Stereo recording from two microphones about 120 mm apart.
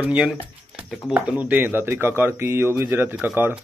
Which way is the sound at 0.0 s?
10° right (ahead or behind).